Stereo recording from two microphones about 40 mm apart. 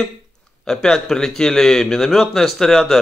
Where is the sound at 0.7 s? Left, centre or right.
Centre.